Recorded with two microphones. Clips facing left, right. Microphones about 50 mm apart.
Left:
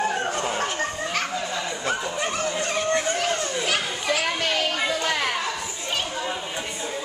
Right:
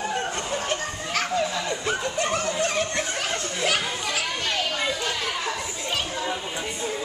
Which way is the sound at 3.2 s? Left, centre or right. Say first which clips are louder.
Left 2 dB; centre.